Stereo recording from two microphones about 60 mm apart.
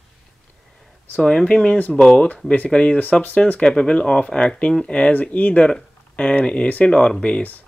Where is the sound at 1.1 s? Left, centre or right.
Centre.